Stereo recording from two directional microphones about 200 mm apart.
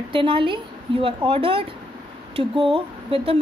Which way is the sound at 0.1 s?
25° right (ahead or behind).